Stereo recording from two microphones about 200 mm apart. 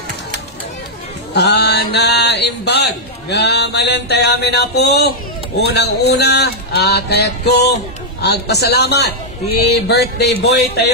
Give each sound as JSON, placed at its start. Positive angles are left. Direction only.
{"t": 1.3, "sound": "speech", "side_deg": 55}